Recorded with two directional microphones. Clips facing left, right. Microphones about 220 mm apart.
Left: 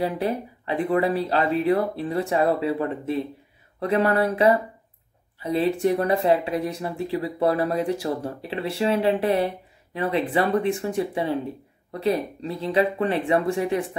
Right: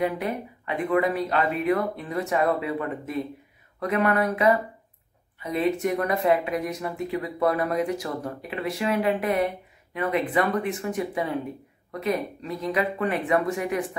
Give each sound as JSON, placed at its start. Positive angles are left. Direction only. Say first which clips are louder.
{"t": 0.0, "sound": "speech", "louder": "left 2 dB", "side_deg": 30}